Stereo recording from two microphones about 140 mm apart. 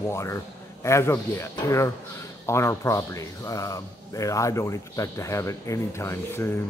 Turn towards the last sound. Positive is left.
turn(degrees=15)  # may be behind; listen again after turning